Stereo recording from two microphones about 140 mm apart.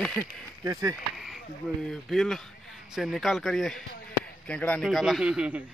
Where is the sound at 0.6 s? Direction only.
25° right (ahead or behind).